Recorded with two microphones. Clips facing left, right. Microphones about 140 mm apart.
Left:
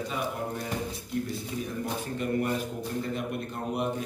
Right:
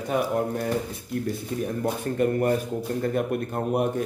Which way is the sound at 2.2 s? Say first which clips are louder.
Right 7 dB; 45° right (ahead or behind).